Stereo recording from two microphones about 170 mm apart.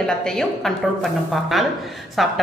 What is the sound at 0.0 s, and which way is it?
A woman's voice, 5° left (ahead or behind).